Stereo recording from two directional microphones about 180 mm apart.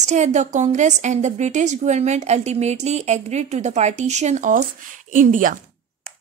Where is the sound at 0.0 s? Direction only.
40° right (ahead or behind).